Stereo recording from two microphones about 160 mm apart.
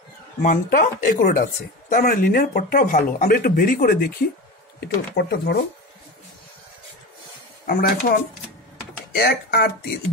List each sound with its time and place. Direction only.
0.4 s speech: 55° left (ahead or behind)
4.7 s speech: 80° left
7.6 s speech: 80° left